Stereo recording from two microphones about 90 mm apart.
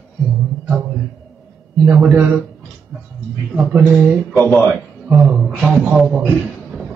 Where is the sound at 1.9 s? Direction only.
10° right (ahead or behind).